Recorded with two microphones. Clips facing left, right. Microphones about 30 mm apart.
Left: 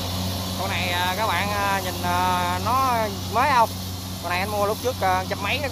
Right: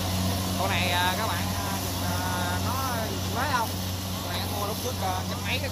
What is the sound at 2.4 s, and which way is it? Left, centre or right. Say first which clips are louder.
Vehicle: left 8 dB; left.